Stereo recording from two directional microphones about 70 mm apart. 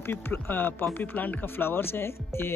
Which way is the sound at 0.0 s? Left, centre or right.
Left.